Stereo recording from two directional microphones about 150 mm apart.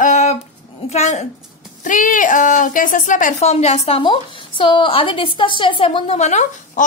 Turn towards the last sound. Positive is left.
turn(degrees=50)  # may be behind; listen again after turning